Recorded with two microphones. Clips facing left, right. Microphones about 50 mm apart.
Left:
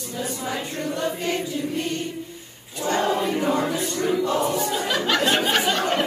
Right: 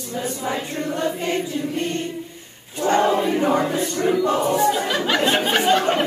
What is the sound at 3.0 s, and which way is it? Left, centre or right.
Choir, centre.